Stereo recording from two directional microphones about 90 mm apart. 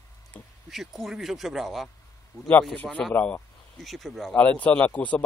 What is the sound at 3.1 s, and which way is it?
Speech, 20° left (ahead or behind).